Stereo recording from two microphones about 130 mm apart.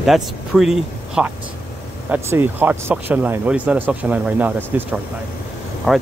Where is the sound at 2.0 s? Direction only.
15° right (ahead or behind).